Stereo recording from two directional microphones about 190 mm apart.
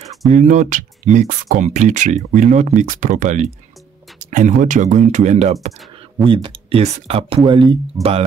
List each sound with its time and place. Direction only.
0.3 s speech: 40° right (ahead or behind)